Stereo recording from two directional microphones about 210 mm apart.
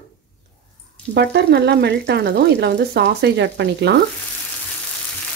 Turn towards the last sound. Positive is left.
turn(degrees=-55)  # may be behind; listen again after turning